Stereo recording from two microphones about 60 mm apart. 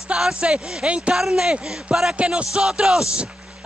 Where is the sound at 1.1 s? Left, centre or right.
Centre.